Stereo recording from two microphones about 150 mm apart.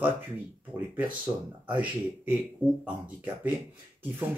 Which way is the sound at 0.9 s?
10° right (ahead or behind).